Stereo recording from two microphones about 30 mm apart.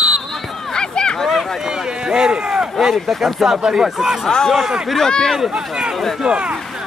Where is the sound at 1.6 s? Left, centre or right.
Centre.